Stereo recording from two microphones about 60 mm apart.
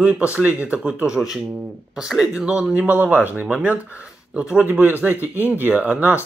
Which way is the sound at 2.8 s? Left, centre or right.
Right.